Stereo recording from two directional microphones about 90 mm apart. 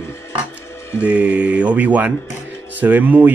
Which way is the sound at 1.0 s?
15° right (ahead or behind).